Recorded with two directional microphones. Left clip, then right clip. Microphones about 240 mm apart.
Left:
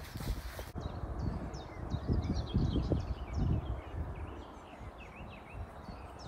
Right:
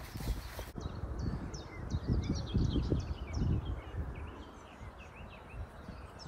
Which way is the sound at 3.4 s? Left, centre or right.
Right.